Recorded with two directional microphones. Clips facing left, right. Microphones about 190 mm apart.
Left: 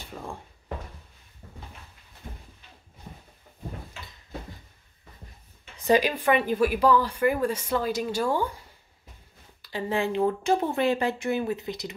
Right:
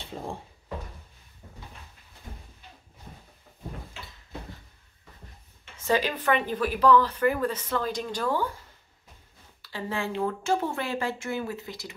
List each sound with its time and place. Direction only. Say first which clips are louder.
0.0 s drawer open or close: right 2 dB; 25° right (ahead or behind)
5.8 s speech: left 4 dB; 15° left (ahead or behind)
9.6 s speech: left 5 dB; 20° left (ahead or behind)